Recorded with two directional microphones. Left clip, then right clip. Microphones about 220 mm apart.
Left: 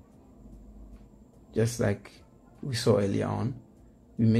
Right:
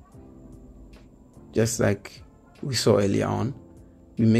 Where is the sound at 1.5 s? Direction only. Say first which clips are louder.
Right 5 dB; 25° right (ahead or behind).